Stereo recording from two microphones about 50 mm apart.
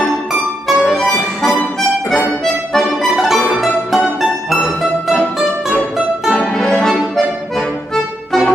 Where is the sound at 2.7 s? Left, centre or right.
Centre.